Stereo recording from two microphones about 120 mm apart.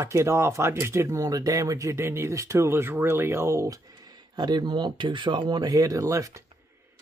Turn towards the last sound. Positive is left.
turn(degrees=-25)  # may be behind; listen again after turning